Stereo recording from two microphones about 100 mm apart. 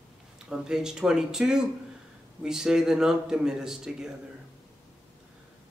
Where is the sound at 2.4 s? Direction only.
5° right (ahead or behind).